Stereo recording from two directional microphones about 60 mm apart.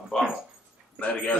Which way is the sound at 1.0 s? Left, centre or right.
Left.